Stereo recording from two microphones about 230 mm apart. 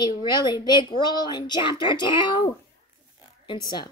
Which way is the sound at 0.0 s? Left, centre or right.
Centre.